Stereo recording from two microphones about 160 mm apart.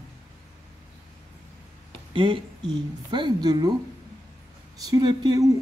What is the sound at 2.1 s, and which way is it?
Speech, 30° right (ahead or behind).